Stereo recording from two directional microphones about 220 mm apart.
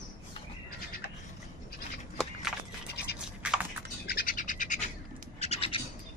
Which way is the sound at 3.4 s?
5° right (ahead or behind).